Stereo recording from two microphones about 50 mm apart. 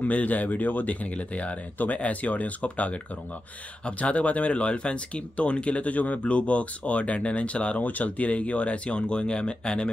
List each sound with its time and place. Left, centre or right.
0.0 s speech: left